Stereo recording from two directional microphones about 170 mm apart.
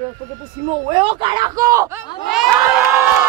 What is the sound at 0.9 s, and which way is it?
Speech, 30° right (ahead or behind).